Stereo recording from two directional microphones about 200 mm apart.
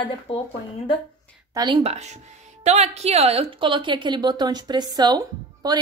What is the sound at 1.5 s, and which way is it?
A woman's voice, 25° right (ahead or behind).